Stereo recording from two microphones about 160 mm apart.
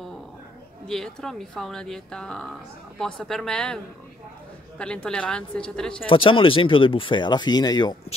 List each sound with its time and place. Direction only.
0.8 s a woman's voice: 5° left (ahead or behind)
6.0 s speech: 35° left (ahead or behind)